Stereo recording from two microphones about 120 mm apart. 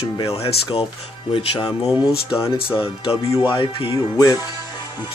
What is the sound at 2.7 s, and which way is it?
Speech, 50° left (ahead or behind).